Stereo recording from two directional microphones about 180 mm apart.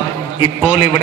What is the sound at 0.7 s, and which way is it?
Speech, 25° left (ahead or behind).